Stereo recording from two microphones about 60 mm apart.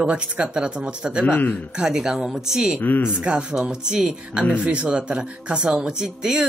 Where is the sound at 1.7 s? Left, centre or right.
Centre.